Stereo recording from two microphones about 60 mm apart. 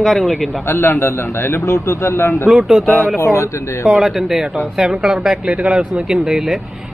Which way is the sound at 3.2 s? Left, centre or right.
Left.